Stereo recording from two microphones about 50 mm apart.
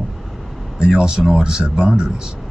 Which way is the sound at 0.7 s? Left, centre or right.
Centre.